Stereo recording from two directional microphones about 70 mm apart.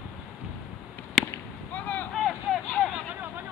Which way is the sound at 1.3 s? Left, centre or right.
Left.